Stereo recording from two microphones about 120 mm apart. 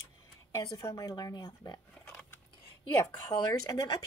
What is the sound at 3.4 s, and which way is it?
Speech, 30° left (ahead or behind).